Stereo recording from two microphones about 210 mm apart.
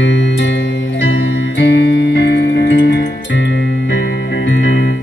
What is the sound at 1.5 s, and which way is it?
Music, 55° left (ahead or behind).